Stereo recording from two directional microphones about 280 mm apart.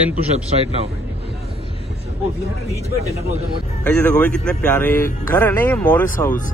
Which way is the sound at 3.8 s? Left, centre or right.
Centre.